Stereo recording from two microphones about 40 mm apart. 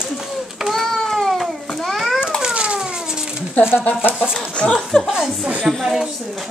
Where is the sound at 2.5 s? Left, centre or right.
Right.